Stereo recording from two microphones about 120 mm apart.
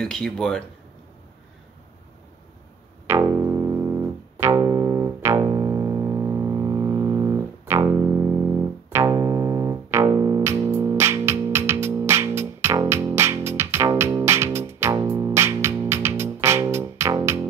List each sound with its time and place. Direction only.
0.0 s speech: 5° left (ahead or behind)
3.1 s music: 25° right (ahead or behind)